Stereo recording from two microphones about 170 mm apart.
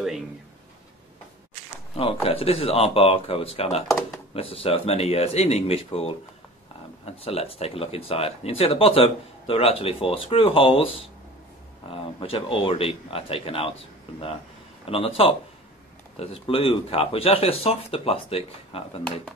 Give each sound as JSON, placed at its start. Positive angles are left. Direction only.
{"t": 2.2, "sound": "speech", "side_deg": 35}
{"t": 7.2, "sound": "speech", "side_deg": 35}
{"t": 11.9, "sound": "speech", "side_deg": 35}
{"t": 14.9, "sound": "speech", "side_deg": 35}